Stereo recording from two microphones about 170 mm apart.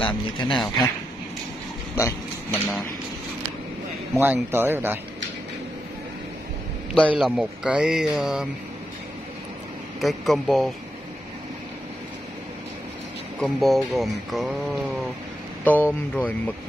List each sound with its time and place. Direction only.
0.0 s speech: 25° left (ahead or behind)
2.0 s speech: 15° left (ahead or behind)
4.2 s speech: 15° right (ahead or behind)
7.1 s speech: centre (ahead or behind)
9.9 s speech: centre (ahead or behind)
13.4 s speech: centre (ahead or behind)
15.6 s speech: 10° left (ahead or behind)